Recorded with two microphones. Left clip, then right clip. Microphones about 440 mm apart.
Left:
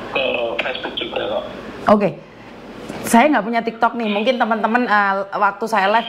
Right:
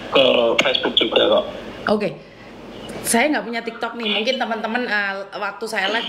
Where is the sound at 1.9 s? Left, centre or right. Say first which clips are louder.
Left 6 dB; left.